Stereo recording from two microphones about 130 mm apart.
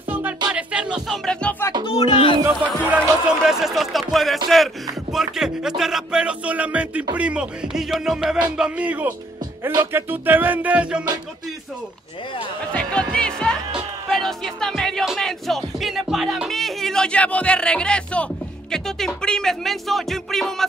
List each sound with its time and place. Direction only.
0.5 s music: 10° right (ahead or behind)
1.9 s speech: 45° left (ahead or behind)
2.4 s music: 10° right (ahead or behind)
12.7 s speech: 5° left (ahead or behind)
14.1 s music: 5° left (ahead or behind)